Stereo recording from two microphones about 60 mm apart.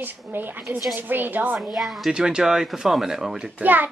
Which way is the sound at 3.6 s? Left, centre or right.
Right.